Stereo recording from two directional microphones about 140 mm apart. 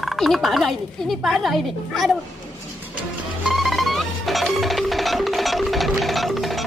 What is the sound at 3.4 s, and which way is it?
Music, centre (ahead or behind).